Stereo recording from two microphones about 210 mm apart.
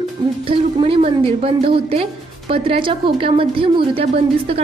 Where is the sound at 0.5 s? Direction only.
25° right (ahead or behind).